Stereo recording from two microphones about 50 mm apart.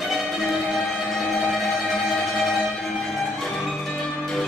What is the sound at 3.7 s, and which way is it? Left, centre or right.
Music, centre.